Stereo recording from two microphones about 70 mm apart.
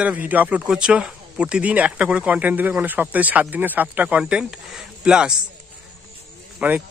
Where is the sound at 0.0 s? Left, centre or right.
Right.